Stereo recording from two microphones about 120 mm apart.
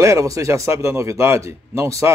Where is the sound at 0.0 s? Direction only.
25° right (ahead or behind).